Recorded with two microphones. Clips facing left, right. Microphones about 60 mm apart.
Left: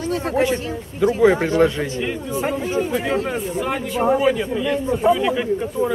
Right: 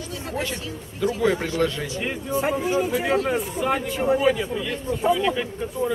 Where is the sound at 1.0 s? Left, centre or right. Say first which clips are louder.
Left 7 dB; left.